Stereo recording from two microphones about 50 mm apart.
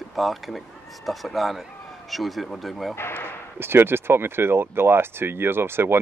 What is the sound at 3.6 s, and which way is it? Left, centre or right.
Speech, right.